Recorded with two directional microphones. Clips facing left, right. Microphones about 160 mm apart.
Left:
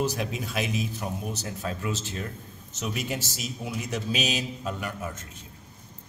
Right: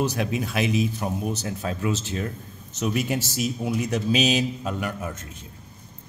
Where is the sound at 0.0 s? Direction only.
65° right (ahead or behind).